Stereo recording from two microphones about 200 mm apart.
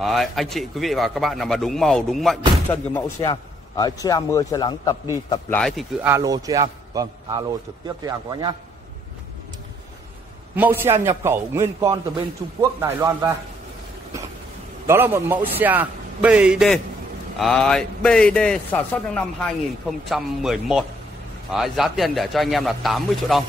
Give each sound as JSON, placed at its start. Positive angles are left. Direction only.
{"t": 0.0, "sound": "a man's voice", "side_deg": 0}
{"t": 5.5, "sound": "a man's voice", "side_deg": 0}
{"t": 6.0, "sound": "a man's voice", "side_deg": -15}
{"t": 10.5, "sound": "a man's voice", "side_deg": -10}
{"t": 14.9, "sound": "a man's voice", "side_deg": -10}